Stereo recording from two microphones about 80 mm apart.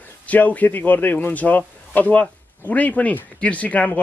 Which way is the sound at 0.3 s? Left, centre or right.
Centre.